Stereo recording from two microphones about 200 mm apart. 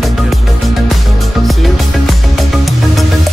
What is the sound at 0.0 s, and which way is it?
Music, centre (ahead or behind).